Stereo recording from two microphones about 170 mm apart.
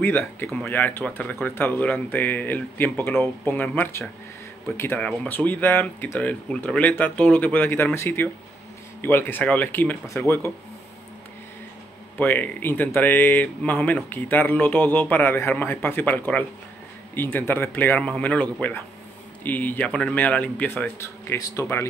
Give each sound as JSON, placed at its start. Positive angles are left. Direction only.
{"t": 0.0, "sound": "speech", "side_deg": 10}
{"t": 12.2, "sound": "speech", "side_deg": 10}